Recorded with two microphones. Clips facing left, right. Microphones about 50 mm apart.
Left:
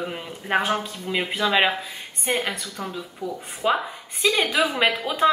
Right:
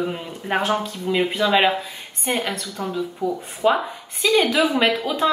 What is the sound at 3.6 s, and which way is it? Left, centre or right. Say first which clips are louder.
Speech: right 4 dB; centre.